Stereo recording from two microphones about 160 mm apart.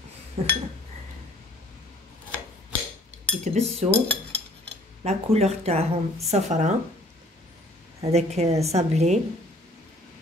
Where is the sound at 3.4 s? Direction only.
45° right (ahead or behind).